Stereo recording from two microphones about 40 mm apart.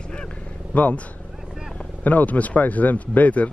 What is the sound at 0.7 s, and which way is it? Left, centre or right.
Speech, left.